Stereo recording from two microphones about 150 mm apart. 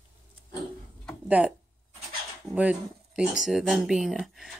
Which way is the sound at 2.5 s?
10° right (ahead or behind).